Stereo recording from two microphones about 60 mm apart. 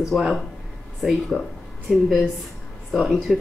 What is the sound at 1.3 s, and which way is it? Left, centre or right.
Speech, right.